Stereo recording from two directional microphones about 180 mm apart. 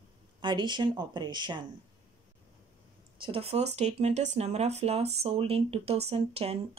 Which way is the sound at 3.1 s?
30° right (ahead or behind).